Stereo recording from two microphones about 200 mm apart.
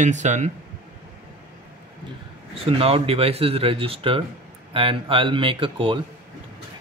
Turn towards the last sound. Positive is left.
turn(degrees=-25)  # may be behind; listen again after turning